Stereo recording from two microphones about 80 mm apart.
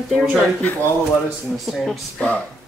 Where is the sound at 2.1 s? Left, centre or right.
Centre.